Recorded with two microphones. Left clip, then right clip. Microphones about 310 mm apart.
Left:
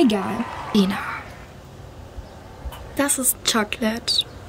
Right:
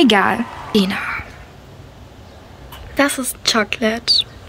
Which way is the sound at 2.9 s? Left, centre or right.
Centre.